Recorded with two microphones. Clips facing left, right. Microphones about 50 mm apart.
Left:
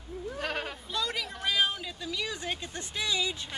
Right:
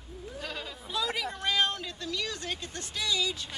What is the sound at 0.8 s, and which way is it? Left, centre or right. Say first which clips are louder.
Speech: right 5 dB; centre.